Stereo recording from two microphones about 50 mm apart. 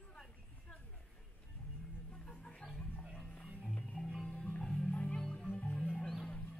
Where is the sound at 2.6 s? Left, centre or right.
Centre.